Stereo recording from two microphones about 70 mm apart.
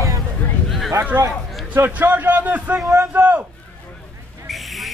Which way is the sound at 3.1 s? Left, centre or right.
Right.